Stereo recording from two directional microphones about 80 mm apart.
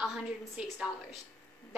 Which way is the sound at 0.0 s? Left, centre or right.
Centre.